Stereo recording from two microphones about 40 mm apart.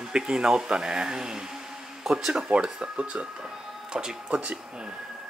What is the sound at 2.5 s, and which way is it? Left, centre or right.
Speech, right.